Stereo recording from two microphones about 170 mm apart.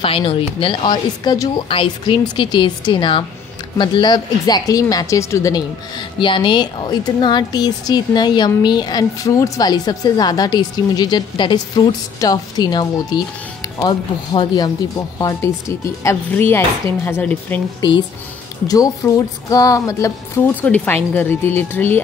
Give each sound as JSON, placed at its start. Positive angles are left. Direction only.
{"t": 0.0, "sound": "speech", "side_deg": 30}
{"t": 17.7, "sound": "speech", "side_deg": 25}